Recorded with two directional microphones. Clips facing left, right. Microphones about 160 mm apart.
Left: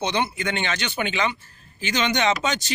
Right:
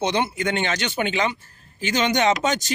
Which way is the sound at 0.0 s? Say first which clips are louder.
Right 2 dB; 45° right (ahead or behind).